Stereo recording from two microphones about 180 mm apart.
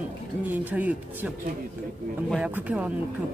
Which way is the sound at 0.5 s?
10° right (ahead or behind).